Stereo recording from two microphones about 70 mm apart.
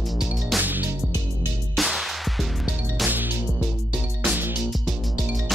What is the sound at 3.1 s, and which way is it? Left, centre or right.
Music, right.